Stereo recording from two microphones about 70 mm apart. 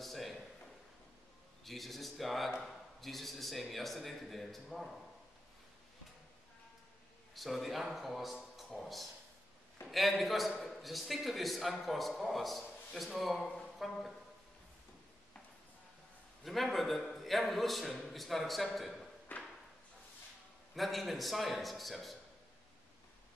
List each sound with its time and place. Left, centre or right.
0.0 s a sound: centre
1.6 s a man's voice: centre
7.3 s a man's voice: centre
16.4 s a man's voice: centre
19.3 s a sound: left
20.7 s a man's voice: centre